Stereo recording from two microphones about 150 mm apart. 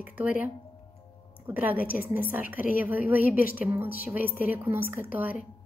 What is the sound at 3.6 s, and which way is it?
Speech, 10° right (ahead or behind).